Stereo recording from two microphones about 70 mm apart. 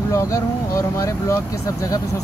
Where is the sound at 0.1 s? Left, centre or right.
Left.